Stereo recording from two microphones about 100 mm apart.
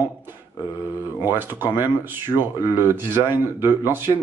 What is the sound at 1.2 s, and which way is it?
Speech, 20° right (ahead or behind).